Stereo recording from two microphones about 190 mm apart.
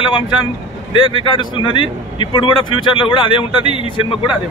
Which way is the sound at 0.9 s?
25° left (ahead or behind).